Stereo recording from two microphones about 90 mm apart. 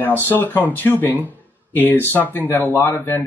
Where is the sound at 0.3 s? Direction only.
20° left (ahead or behind).